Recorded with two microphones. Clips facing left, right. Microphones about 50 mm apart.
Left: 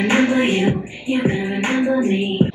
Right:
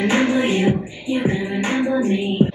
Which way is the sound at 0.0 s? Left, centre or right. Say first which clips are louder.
Left 1 dB; left.